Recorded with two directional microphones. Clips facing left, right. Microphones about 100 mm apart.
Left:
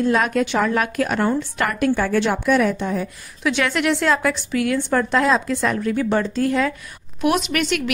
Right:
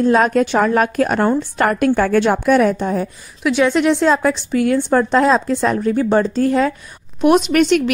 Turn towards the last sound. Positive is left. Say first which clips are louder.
# right 8 dB
turn(degrees=-35)  # may be behind; listen again after turning